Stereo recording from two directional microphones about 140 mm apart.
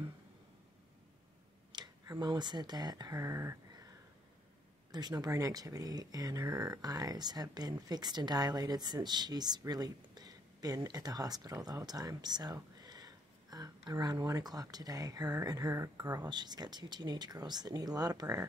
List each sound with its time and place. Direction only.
1.7 s speech: 30° right (ahead or behind)
4.9 s speech: 30° right (ahead or behind)